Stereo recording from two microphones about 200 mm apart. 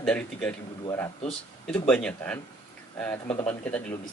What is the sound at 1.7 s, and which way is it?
Speech, 5° left (ahead or behind).